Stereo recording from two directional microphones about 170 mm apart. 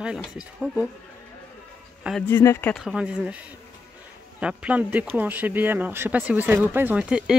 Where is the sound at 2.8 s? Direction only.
5° right (ahead or behind).